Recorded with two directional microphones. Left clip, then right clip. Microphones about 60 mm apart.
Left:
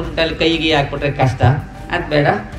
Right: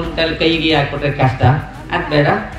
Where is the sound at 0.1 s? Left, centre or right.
Left.